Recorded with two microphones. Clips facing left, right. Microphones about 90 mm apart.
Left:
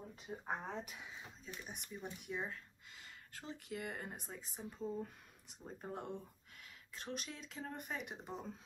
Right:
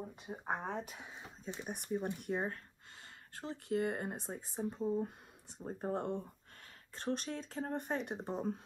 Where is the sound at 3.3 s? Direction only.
35° right (ahead or behind).